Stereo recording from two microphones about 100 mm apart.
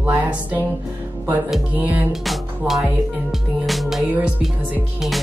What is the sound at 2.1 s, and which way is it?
Music, 5° right (ahead or behind).